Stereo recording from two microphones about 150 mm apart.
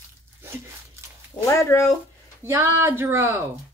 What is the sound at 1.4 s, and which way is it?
Speech, 20° left (ahead or behind).